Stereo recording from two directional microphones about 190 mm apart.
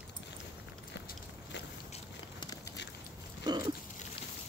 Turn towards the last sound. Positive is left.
turn(degrees=-20)  # may be behind; listen again after turning